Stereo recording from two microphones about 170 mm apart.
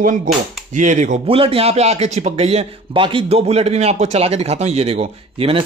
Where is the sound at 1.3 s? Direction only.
35° right (ahead or behind).